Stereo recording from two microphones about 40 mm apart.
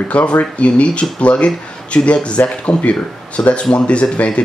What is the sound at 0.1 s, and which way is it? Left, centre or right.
Speech, left.